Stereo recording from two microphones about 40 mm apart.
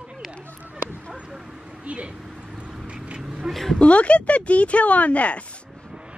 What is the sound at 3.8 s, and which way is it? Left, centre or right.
Speech, left.